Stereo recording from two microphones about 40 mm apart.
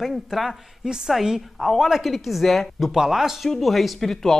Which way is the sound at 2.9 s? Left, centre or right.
Centre.